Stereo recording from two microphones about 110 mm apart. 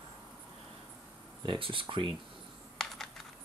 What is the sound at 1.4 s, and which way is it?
Speech, 50° right (ahead or behind).